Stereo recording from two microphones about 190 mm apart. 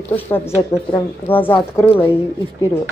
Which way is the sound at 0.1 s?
10° left (ahead or behind).